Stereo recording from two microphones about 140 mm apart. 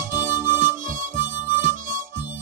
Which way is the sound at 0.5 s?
70° right (ahead or behind).